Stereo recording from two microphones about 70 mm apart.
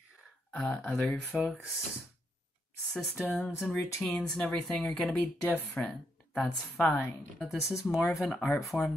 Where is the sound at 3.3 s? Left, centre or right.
Centre.